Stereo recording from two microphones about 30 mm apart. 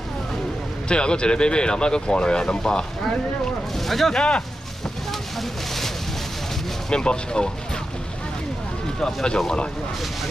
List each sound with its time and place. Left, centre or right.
0.8 s speech: left
3.7 s speech: centre
4.1 s speech: left
6.9 s speech: left
9.0 s speech: left